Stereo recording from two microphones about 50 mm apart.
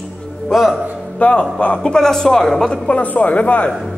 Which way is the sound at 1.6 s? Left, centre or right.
Left.